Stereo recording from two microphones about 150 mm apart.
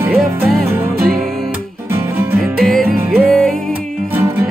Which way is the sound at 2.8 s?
70° right (ahead or behind).